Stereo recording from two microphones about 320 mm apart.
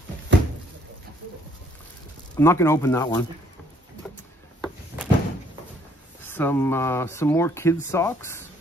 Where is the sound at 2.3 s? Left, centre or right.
Centre.